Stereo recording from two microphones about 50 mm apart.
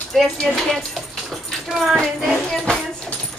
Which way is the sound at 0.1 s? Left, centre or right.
Centre.